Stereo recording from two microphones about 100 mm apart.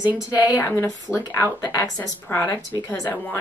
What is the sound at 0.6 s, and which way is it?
A woman's voice, 25° left (ahead or behind).